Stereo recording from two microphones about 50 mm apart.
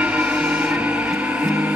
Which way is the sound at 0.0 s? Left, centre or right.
Right.